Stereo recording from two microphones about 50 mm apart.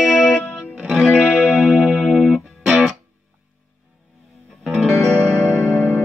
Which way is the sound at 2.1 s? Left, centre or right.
Centre.